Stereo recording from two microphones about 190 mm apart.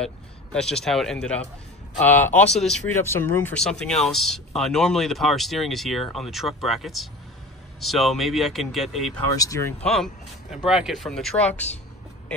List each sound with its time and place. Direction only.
0.0 s speech: 5° left (ahead or behind)
3.1 s speech: 15° left (ahead or behind)
9.4 s speech: 15° left (ahead or behind)
9.9 s speech: centre (ahead or behind)